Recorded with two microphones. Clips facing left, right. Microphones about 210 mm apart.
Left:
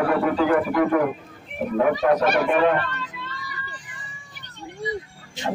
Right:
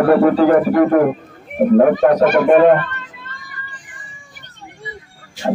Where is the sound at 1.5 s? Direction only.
50° right (ahead or behind).